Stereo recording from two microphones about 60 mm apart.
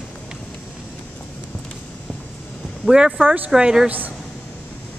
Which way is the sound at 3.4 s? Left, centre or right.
Centre.